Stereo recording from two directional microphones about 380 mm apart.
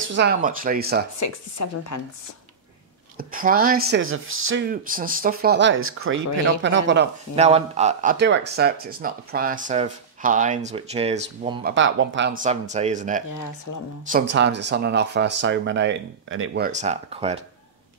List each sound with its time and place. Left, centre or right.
0.1 s speech: right
1.2 s speech: left
3.2 s speech: right
7.3 s speech: centre
11.7 s speech: right